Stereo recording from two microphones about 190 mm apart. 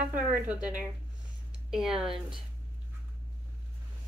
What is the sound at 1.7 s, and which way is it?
Speech, 5° right (ahead or behind).